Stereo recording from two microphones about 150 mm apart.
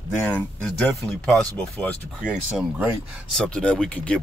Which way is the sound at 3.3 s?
5° left (ahead or behind).